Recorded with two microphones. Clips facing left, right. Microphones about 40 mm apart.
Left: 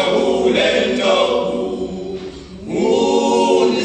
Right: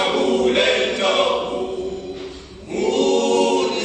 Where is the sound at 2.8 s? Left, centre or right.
Centre.